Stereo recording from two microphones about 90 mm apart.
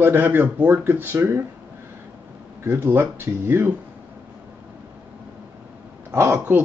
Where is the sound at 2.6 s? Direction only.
30° right (ahead or behind).